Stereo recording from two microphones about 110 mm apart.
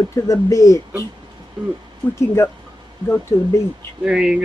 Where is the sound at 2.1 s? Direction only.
25° left (ahead or behind).